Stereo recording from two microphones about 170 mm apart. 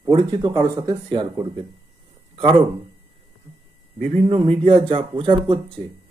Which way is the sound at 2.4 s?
30° right (ahead or behind).